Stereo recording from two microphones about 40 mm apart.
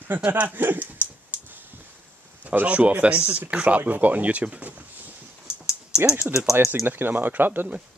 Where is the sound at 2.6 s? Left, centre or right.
Right.